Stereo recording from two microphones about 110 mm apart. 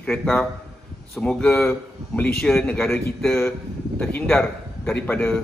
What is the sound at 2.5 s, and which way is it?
A man's voice, 20° left (ahead or behind).